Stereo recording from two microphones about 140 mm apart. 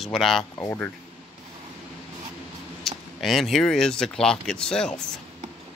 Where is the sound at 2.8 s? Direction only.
Centre (ahead or behind).